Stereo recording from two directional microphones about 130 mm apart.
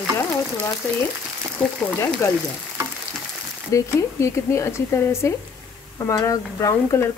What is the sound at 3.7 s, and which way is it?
A woman's voice, 20° left (ahead or behind).